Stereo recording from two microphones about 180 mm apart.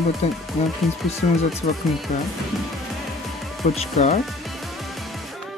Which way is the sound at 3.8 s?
40° left (ahead or behind).